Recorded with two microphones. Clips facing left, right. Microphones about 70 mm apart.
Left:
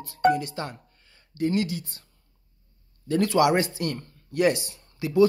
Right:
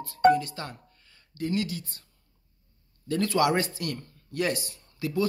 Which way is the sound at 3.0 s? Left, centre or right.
Left.